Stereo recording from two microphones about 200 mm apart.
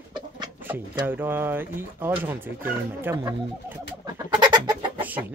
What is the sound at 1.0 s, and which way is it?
Speech, 10° right (ahead or behind).